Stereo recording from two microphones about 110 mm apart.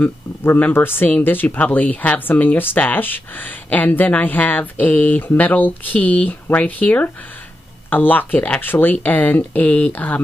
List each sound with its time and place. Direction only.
0.0 s speech: 15° left (ahead or behind)